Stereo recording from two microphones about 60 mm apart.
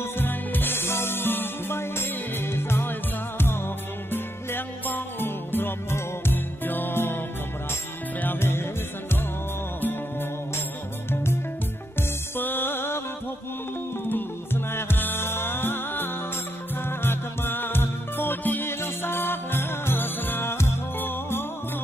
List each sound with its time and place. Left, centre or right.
0.0 s music: left
12.4 s music: left
14.0 s music: left